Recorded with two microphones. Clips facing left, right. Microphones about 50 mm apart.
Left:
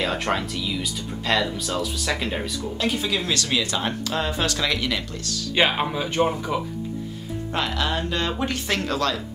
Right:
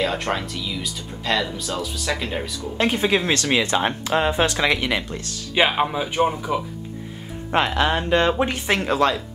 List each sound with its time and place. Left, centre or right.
0.0 s speech: centre
2.8 s speech: right
5.5 s speech: centre
7.5 s speech: right